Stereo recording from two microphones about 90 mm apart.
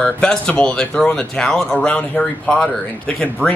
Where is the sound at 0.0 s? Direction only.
10° left (ahead or behind).